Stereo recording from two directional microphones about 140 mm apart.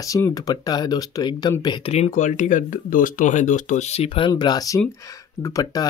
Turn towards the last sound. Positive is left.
turn(degrees=25)  # may be behind; listen again after turning